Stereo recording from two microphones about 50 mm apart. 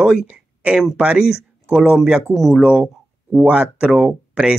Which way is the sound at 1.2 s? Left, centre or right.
Centre.